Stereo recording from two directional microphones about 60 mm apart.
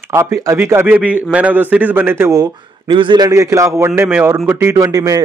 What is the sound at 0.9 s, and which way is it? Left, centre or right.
A man's voice, right.